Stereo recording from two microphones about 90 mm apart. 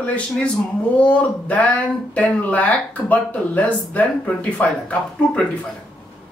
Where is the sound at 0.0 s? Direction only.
15° left (ahead or behind).